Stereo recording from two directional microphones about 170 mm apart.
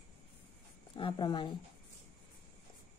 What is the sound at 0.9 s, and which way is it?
Speech, 30° left (ahead or behind).